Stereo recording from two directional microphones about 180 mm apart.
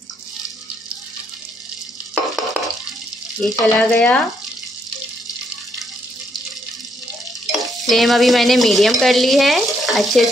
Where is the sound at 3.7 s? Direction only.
5° left (ahead or behind).